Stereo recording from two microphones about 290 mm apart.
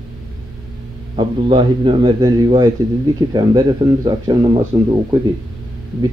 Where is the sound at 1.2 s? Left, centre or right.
Centre.